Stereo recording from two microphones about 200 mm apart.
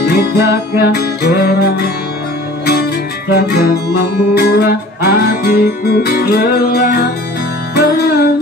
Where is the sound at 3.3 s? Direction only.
50° left (ahead or behind).